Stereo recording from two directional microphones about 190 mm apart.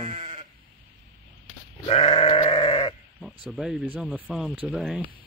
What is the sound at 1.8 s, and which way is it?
Sheep, 30° left (ahead or behind).